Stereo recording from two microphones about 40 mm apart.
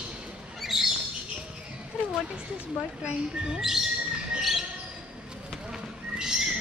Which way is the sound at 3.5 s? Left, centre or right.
Centre.